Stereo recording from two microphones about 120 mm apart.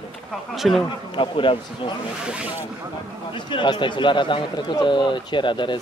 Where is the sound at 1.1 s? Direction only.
45° left (ahead or behind).